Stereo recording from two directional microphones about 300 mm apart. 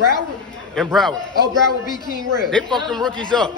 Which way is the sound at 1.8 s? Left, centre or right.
Centre.